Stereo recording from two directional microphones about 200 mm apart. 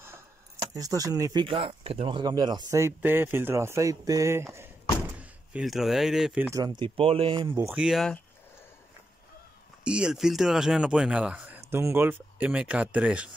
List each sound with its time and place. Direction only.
0.7 s speech: 15° right (ahead or behind)
6.6 s speech: 20° right (ahead or behind)
7.5 s speech: 10° right (ahead or behind)
9.8 s speech: 5° right (ahead or behind)